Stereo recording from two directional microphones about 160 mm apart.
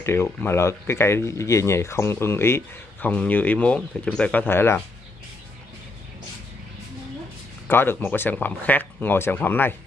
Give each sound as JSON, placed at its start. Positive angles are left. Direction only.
{"t": 0.0, "sound": "speech", "side_deg": 15}
{"t": 7.6, "sound": "speech", "side_deg": 15}